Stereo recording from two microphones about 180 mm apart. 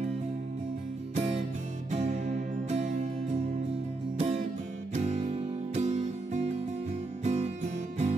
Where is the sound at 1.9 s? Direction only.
40° right (ahead or behind).